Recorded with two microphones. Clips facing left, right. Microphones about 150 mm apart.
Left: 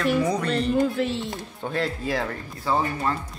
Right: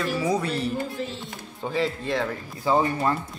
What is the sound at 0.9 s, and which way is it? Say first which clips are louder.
Speech: left 7 dB; 70° left (ahead or behind).